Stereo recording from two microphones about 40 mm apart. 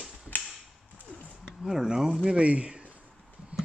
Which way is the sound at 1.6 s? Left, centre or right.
Centre.